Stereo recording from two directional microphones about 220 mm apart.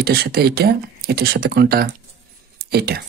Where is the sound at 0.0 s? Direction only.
45° right (ahead or behind).